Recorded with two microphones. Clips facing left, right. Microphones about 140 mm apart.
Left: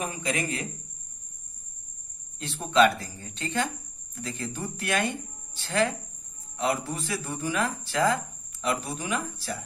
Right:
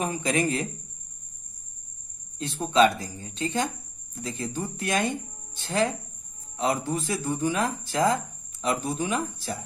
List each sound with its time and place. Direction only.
0.0 s speech: 30° right (ahead or behind)
2.3 s speech: 20° right (ahead or behind)